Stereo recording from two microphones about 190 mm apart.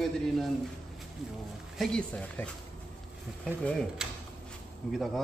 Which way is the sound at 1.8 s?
5° left (ahead or behind).